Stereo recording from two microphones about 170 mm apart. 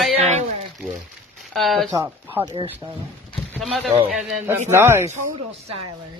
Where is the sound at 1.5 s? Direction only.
Centre (ahead or behind).